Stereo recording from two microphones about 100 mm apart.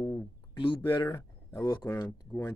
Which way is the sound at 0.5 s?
55° left (ahead or behind).